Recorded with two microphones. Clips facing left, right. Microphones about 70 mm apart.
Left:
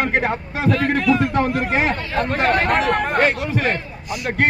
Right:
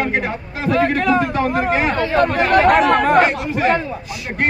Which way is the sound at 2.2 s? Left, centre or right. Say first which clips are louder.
Right 4 dB; right.